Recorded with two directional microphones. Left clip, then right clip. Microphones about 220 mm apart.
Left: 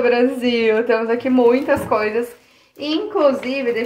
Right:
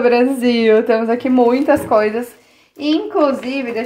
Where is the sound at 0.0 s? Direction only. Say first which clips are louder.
Right 3 dB; 40° right (ahead or behind).